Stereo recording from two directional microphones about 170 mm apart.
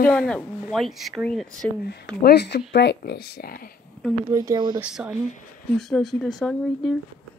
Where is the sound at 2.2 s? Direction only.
70° left (ahead or behind).